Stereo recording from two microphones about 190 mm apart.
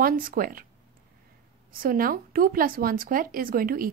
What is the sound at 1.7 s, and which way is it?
Speech, 50° right (ahead or behind).